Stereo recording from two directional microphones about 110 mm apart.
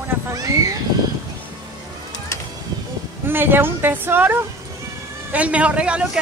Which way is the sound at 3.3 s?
20° right (ahead or behind).